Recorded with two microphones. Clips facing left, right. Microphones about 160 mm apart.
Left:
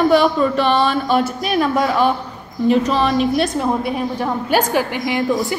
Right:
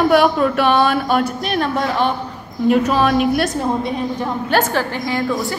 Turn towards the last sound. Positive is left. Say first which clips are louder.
# left 2 dB
turn(degrees=15)  # may be behind; listen again after turning